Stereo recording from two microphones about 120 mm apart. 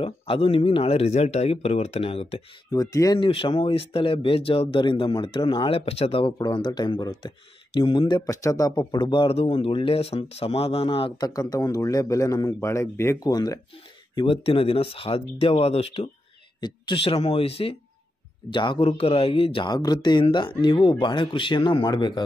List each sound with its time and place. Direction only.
0.0 s speech: 50° left (ahead or behind)
2.7 s a man's voice: 30° left (ahead or behind)
3.2 s speech: 45° left (ahead or behind)
6.3 s speech: 35° left (ahead or behind)
8.3 s a man's voice: 25° left (ahead or behind)
8.7 s speech: 40° left (ahead or behind)
11.1 s a man's voice: 30° left (ahead or behind)
13.2 s speech: 35° left (ahead or behind)
14.1 s speech: 50° left (ahead or behind)
18.5 s speech: 40° left (ahead or behind)